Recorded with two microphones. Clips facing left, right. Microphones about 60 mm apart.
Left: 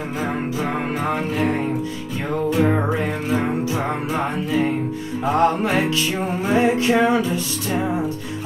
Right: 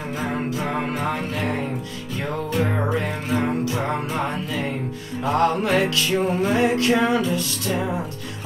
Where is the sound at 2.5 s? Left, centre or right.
Centre.